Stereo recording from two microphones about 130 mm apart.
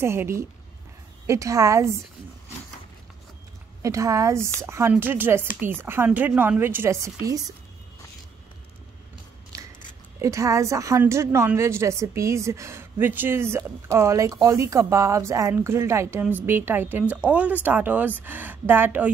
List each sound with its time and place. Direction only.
0.0 s a woman's voice: 20° right (ahead or behind)
3.8 s a woman's voice: 25° right (ahead or behind)
10.2 s a woman's voice: 25° right (ahead or behind)